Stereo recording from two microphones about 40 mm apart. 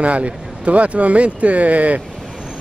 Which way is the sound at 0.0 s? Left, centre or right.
Right.